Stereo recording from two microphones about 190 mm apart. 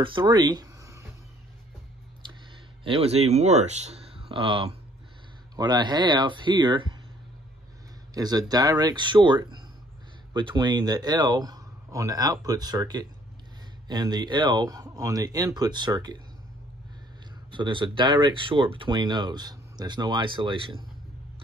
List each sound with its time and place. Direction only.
0.0 s speech: 25° right (ahead or behind)
2.8 s speech: 30° right (ahead or behind)
8.1 s speech: 20° right (ahead or behind)
17.5 s speech: 25° right (ahead or behind)